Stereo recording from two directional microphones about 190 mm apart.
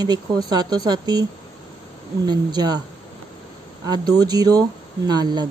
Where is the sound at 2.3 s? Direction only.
20° right (ahead or behind).